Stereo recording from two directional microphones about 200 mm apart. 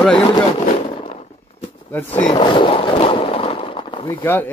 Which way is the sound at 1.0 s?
30° left (ahead or behind).